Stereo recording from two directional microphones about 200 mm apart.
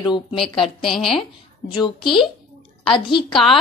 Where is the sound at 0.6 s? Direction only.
Centre (ahead or behind).